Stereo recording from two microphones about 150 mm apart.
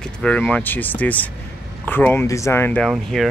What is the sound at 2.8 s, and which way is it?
Speech, centre (ahead or behind).